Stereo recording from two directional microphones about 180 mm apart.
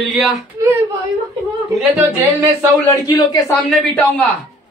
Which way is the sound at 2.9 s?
20° left (ahead or behind).